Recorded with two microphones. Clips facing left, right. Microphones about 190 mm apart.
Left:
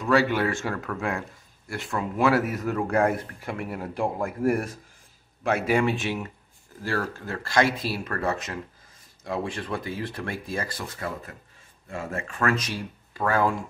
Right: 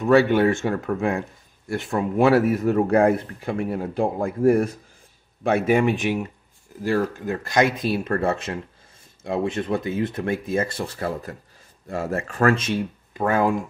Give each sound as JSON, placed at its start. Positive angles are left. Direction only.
{"t": 0.0, "sound": "a man's voice", "side_deg": -25}
{"t": 5.7, "sound": "a man's voice", "side_deg": -20}